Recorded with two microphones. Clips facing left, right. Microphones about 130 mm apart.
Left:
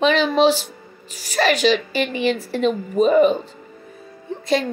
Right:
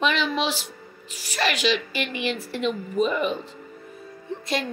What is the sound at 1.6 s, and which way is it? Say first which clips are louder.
A woman's voice: left 6 dB; 35° left (ahead or behind).